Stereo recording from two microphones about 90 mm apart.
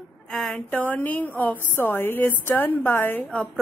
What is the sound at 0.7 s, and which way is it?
A woman's voice, 20° left (ahead or behind).